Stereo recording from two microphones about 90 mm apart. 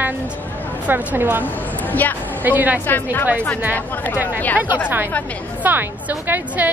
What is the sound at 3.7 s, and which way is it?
Speech, 20° left (ahead or behind).